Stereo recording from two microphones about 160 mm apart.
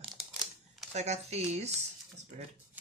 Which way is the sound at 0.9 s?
45° right (ahead or behind).